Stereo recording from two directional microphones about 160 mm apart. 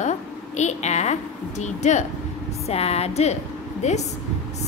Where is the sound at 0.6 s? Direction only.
45° left (ahead or behind).